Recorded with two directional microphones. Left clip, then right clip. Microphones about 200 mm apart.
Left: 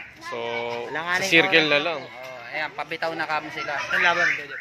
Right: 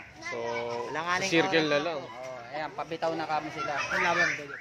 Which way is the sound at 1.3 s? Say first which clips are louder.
Left 9 dB; 15° left (ahead or behind).